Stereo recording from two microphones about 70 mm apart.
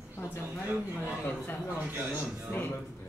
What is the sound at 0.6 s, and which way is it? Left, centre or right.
Speech, right.